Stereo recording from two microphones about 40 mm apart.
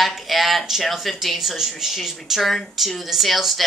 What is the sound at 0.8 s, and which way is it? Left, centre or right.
A woman's voice, centre.